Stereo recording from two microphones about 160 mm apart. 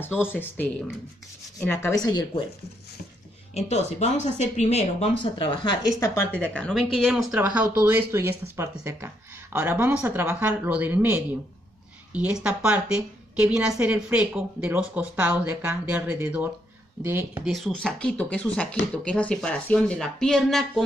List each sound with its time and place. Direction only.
0.0 s speech: 15° left (ahead or behind)
2.0 s speech: 25° left (ahead or behind)
3.5 s speech: 40° left (ahead or behind)
5.2 s speech: 30° left (ahead or behind); by 6.7 s 10° left (ahead or behind)
6.7 s a woman's voice: centre (ahead or behind)
17.5 s speech: centre (ahead or behind)